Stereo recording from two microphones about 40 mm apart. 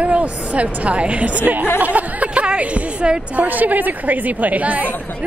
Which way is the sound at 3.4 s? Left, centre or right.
Right.